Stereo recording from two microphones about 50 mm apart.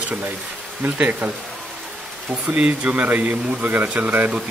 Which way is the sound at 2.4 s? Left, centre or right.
Right.